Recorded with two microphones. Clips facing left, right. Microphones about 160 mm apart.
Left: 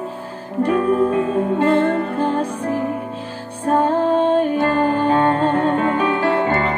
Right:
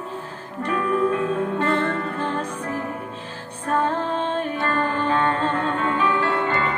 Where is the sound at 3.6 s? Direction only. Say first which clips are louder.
Left 6 dB; 35° left (ahead or behind).